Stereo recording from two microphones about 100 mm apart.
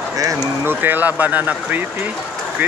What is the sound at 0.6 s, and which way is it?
Speech, 20° right (ahead or behind).